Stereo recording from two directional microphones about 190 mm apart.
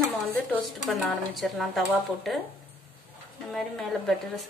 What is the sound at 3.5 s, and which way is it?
A woman's voice, 5° left (ahead or behind).